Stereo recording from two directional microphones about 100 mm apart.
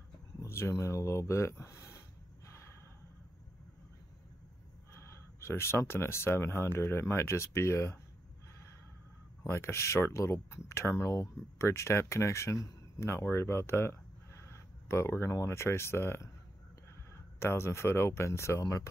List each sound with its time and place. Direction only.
0.4 s a sound: 25° left (ahead or behind)
5.0 s speech: 30° left (ahead or behind)
9.4 s speech: 25° left (ahead or behind)
17.4 s speech: 25° left (ahead or behind)